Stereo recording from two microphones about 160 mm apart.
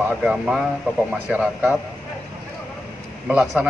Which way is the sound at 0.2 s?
5° right (ahead or behind).